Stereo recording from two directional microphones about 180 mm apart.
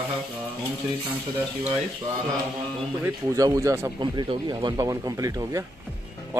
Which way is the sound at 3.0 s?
20° right (ahead or behind).